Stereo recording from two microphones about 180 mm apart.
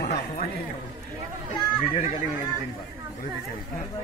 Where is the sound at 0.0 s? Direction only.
55° left (ahead or behind).